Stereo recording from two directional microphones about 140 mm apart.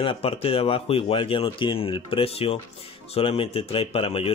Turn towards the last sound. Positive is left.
turn(degrees=40)  # may be behind; listen again after turning